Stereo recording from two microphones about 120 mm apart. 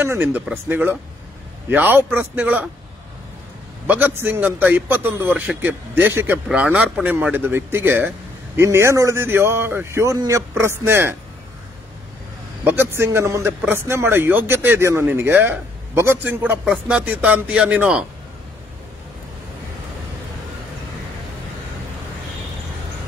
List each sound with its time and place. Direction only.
0.0 s speech: 20° right (ahead or behind)
3.8 s speech: 15° right (ahead or behind)
12.6 s speech: 20° right (ahead or behind)